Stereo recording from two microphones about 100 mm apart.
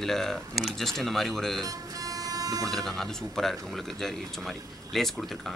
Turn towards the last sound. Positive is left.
turn(degrees=0)  # may be behind; listen again after turning